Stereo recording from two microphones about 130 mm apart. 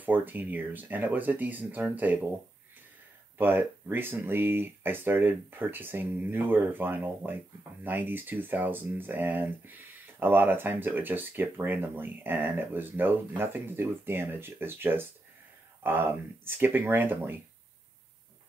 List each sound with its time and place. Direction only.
0.0 s speech: 15° right (ahead or behind)
3.3 s speech: 15° right (ahead or behind)